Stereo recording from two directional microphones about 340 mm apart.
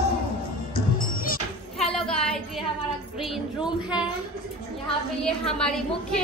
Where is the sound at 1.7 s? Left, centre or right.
Centre.